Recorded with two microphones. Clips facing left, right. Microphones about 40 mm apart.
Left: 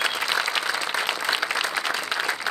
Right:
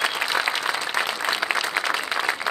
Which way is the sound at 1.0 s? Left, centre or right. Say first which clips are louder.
Right 1 dB; right.